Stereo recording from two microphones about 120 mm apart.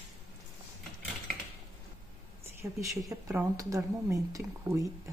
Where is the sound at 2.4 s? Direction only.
25° right (ahead or behind).